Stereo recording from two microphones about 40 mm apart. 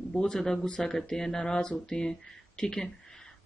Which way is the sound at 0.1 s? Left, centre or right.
Centre.